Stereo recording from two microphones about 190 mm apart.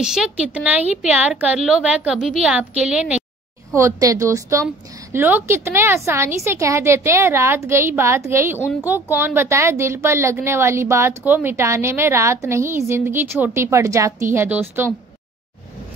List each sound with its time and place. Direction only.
0.0 s a woman's voice: 5° right (ahead or behind)